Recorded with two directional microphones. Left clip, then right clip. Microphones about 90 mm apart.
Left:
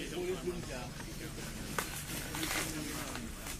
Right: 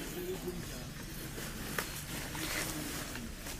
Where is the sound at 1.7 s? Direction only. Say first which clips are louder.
Left 1 dB; centre (ahead or behind).